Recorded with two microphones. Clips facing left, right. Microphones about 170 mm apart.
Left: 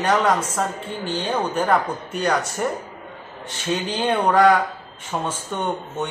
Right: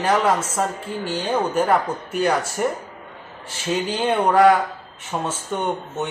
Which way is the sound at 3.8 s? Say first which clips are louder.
Right 1 dB; centre (ahead or behind).